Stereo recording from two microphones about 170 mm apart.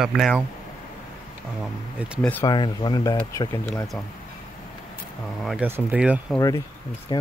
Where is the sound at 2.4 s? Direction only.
25° left (ahead or behind).